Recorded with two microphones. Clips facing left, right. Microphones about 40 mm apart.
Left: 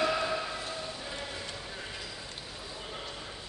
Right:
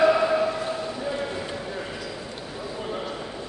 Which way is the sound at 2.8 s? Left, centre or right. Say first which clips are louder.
Right 11 dB; centre.